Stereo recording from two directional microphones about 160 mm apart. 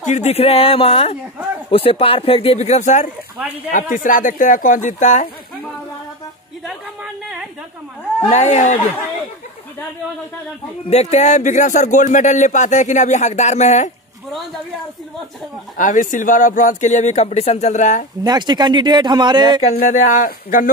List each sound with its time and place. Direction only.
0.0 s speech: 45° left (ahead or behind)
3.3 s speech: 10° right (ahead or behind)
3.7 s speech: 55° left (ahead or behind)
6.6 s a sound: 5° right (ahead or behind)
8.3 s speech: 45° left (ahead or behind)
10.9 s speech: 45° left (ahead or behind)
15.8 s speech: 55° left (ahead or behind)
18.2 s speech: 25° right (ahead or behind)
19.9 s speech: 55° left (ahead or behind)